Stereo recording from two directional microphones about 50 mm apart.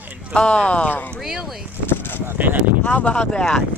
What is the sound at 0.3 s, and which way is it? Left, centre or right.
Speech, left.